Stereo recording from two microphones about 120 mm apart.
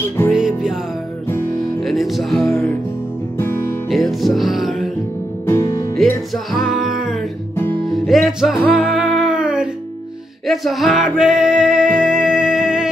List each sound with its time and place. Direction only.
0.3 s music: 5° right (ahead or behind)
3.9 s music: centre (ahead or behind)
5.5 s music: 25° left (ahead or behind)
6.3 s music: centre (ahead or behind)